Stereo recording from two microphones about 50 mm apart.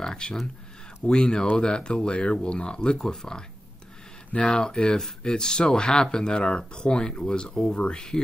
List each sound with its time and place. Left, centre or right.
0.0 s speech: centre